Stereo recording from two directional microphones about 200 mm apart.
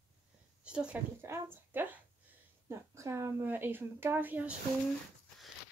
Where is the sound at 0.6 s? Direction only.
5° right (ahead or behind).